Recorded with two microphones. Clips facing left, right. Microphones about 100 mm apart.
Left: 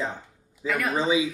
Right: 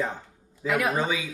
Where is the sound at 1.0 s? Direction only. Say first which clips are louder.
Left 5 dB; 20° left (ahead or behind).